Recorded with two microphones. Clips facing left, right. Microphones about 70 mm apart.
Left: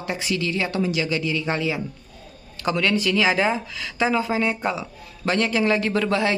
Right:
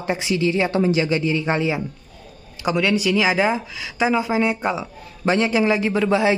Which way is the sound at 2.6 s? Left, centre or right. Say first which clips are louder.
Right 2 dB; centre.